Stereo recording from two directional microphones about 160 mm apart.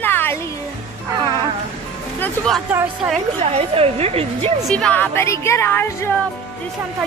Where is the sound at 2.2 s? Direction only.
5° left (ahead or behind).